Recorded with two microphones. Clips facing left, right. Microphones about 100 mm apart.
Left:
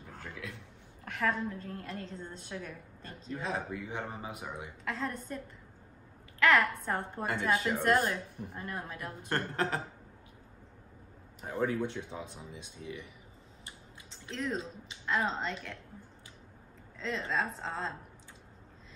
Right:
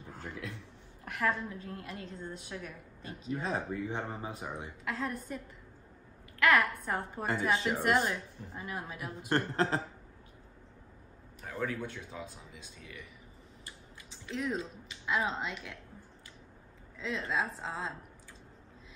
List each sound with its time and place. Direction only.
0.2 s speech: 35° right (ahead or behind)
1.0 s a woman's voice: 5° right (ahead or behind)
3.3 s speech: 35° right (ahead or behind)
4.8 s a woman's voice: 5° right (ahead or behind)
6.4 s a woman's voice: centre (ahead or behind)
7.5 s speech: 20° right (ahead or behind)
7.8 s a woman's voice: centre (ahead or behind)
9.3 s speech: 30° right (ahead or behind)
11.4 s speech: 20° left (ahead or behind)
14.3 s a woman's voice: 10° right (ahead or behind)
17.0 s a woman's voice: 5° right (ahead or behind)